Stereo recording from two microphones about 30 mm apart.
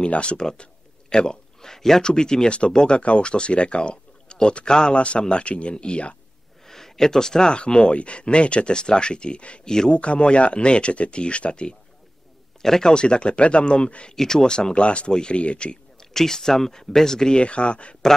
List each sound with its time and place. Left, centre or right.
0.1 s speech: left
1.6 s speech: centre
3.0 s speech: left
4.9 s speech: left
6.6 s a sound: centre
7.5 s speech: left
9.7 s speech: left
9.9 s speech: left
12.6 s speech: centre
12.9 s speech: left
14.1 s speech: centre; by 15.8 s left
16.0 s speech: centre
17.4 s speech: left